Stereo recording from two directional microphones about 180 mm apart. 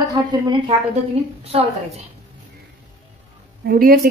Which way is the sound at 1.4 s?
35° right (ahead or behind).